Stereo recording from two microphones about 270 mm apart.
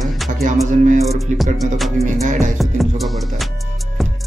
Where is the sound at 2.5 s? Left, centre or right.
Centre.